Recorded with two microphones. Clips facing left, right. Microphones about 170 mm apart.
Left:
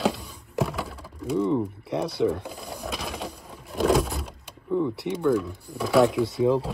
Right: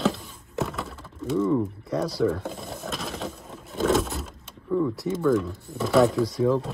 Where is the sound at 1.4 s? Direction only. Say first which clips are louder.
Right 1 dB; 20° left (ahead or behind).